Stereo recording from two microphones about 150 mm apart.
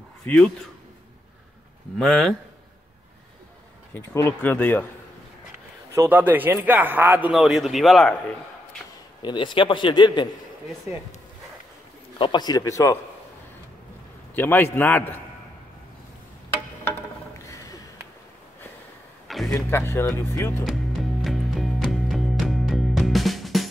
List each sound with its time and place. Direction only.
0.3 s speech: 10° left (ahead or behind)
2.0 s speech: centre (ahead or behind)
3.9 s speech: 15° left (ahead or behind)
5.9 s speech: 10° right (ahead or behind)
9.2 s a man's voice: 30° left (ahead or behind)
12.2 s a man's voice: 30° left (ahead or behind)
14.3 s speech: 15° left (ahead or behind)
17.5 s a sound: 25° left (ahead or behind)
19.2 s a sound: centre (ahead or behind)
19.5 s speech: 20° left (ahead or behind)
20.6 s music: centre (ahead or behind)